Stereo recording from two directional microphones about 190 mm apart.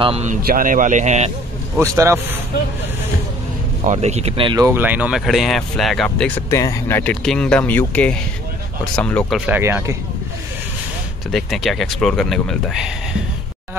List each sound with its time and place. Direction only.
0.0 s speech: 35° right (ahead or behind)
0.5 s speech: 45° right (ahead or behind)
1.8 s speech: 15° right (ahead or behind)
3.8 s speech: 35° right (ahead or behind); by 9.4 s 5° left (ahead or behind)
9.5 s speech: 10° right (ahead or behind)
11.3 s speech: centre (ahead or behind)